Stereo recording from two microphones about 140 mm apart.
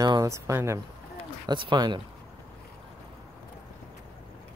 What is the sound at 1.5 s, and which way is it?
Speech, 35° right (ahead or behind).